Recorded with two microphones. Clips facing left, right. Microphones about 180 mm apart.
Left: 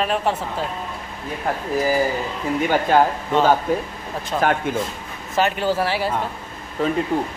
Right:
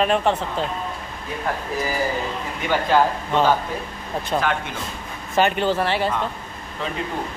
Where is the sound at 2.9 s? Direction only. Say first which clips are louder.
Left 1 dB; 50° left (ahead or behind).